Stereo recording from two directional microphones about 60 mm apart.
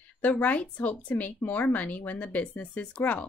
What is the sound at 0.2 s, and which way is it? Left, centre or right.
Speech, left.